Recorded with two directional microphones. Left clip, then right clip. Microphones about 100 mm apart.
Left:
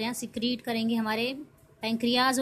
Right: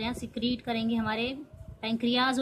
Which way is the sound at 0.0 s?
25° left (ahead or behind).